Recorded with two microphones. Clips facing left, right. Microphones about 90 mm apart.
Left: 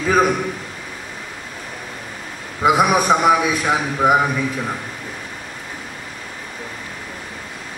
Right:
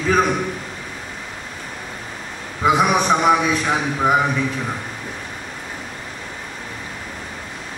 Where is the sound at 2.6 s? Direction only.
5° left (ahead or behind).